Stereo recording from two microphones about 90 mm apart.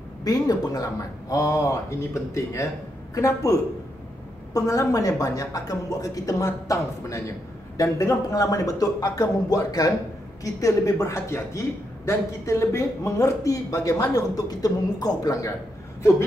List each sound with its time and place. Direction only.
0.2 s a woman's voice: 45° left (ahead or behind)
4.6 s a woman's voice: 40° left (ahead or behind)